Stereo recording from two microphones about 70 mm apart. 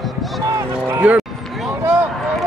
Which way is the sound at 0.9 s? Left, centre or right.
Right.